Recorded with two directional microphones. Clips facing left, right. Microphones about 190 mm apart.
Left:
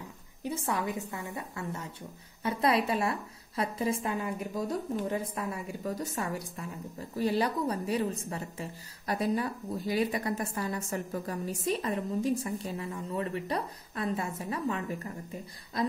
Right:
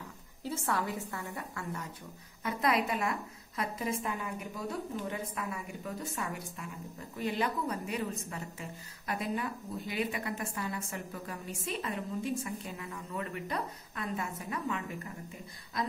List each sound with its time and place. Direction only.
0.4 s a woman's voice: 15° left (ahead or behind); by 15.0 s 35° left (ahead or behind)